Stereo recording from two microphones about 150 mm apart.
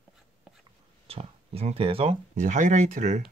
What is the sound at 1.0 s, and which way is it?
Speech, 40° right (ahead or behind).